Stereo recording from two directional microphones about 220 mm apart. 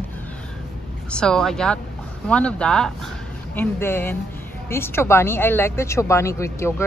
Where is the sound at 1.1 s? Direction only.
5° left (ahead or behind).